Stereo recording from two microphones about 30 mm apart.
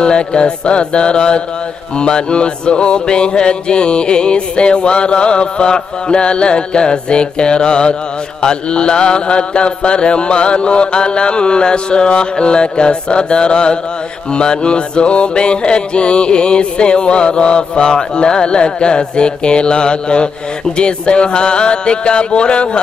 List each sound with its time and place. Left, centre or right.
0.0 s music: left